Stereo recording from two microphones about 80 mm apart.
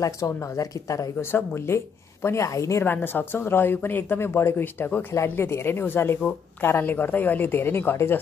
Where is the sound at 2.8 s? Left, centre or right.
Left.